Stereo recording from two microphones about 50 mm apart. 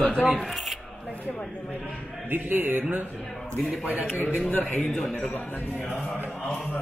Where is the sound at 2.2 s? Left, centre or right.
Right.